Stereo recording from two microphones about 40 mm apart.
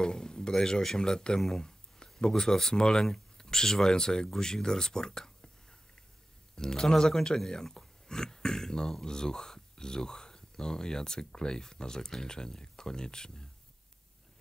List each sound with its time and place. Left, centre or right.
0.0 s speech: centre